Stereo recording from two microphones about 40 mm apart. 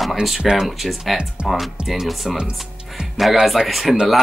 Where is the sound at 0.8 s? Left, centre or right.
Centre.